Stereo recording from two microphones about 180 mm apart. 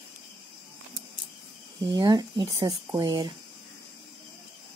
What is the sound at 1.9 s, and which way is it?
A woman's voice, 25° right (ahead or behind).